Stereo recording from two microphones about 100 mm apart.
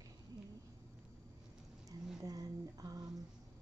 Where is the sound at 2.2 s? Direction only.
40° right (ahead or behind).